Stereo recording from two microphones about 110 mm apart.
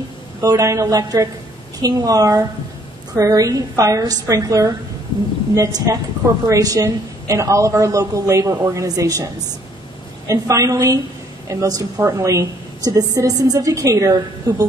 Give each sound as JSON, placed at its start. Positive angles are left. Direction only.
{"t": 0.4, "sound": "a woman's voice", "side_deg": -30}